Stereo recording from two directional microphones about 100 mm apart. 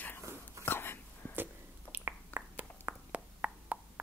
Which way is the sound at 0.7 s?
25° left (ahead or behind).